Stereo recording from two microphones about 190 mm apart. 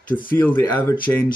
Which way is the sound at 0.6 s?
15° left (ahead or behind).